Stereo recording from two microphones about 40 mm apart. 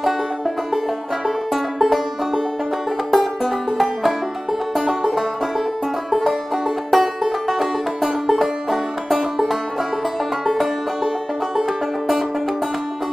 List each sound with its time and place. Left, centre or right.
1.2 s music: centre
3.1 s banjo: centre
4.7 s music: centre